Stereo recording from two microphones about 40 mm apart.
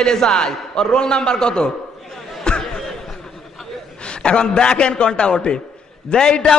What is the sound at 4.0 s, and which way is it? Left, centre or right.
A man's voice, left.